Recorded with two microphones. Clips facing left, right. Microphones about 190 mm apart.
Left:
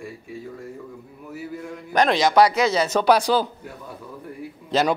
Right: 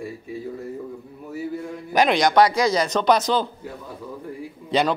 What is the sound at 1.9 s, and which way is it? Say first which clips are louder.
Speech: even; 5° right (ahead or behind).